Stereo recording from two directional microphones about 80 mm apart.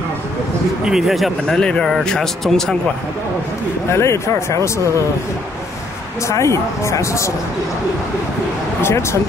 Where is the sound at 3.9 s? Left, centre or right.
Left.